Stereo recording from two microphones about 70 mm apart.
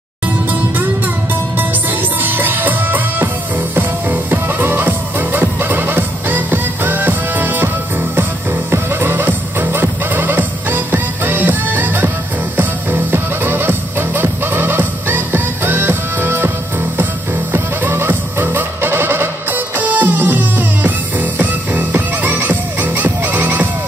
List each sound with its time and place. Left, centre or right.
2.2 s music: right
8.7 s music: right